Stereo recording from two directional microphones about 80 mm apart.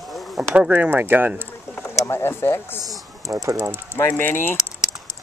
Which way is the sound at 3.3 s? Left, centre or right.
Right.